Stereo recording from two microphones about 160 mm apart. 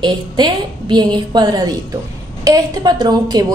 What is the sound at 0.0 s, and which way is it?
A woman's voice, 30° right (ahead or behind).